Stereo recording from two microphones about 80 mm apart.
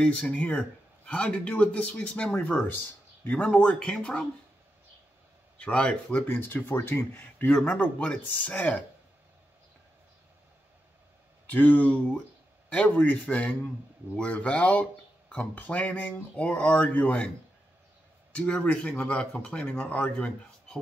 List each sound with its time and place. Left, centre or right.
0.0 s speech: centre
5.6 s speech: centre
6.1 s speech: left
7.7 s speech: centre
11.5 s speech: left
18.3 s speech: centre